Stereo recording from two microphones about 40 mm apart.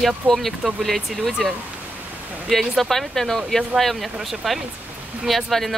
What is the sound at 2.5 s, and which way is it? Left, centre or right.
Speech, centre.